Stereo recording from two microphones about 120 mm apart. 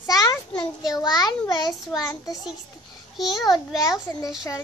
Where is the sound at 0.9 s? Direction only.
35° left (ahead or behind).